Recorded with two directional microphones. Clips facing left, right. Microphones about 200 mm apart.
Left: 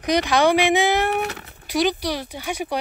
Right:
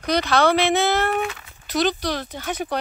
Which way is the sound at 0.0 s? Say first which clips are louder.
Left 1 dB; 15° left (ahead or behind).